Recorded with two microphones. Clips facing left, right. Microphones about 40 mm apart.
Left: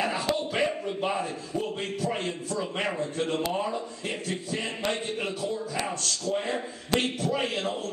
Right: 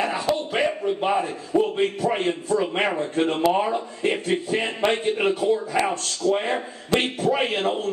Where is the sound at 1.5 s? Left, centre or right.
Right.